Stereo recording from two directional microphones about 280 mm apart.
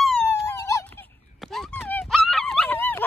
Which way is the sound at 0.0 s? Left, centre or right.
Centre.